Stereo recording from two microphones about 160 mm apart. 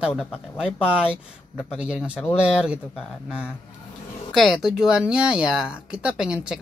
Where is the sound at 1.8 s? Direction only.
5° right (ahead or behind).